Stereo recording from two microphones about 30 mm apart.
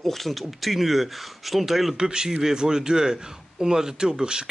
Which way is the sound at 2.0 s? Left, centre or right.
Right.